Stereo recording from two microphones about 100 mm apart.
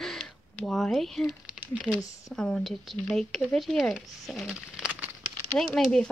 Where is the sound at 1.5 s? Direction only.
15° right (ahead or behind).